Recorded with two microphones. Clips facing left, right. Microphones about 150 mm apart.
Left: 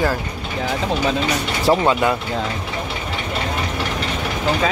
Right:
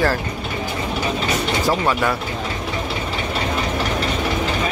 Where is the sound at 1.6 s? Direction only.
15° left (ahead or behind).